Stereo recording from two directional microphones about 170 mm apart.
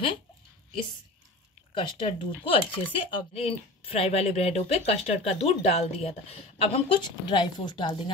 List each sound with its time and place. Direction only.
1.7 s speech: 30° left (ahead or behind)